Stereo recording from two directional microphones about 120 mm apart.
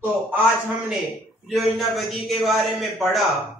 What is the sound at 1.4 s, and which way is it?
A man's voice, centre (ahead or behind).